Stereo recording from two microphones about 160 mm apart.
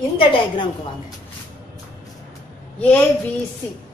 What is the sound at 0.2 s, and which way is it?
Speech, 30° left (ahead or behind).